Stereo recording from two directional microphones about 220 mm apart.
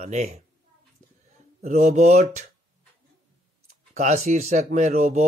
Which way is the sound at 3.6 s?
35° right (ahead or behind).